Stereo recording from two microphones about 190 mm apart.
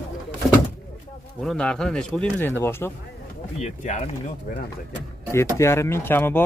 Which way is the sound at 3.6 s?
40° left (ahead or behind).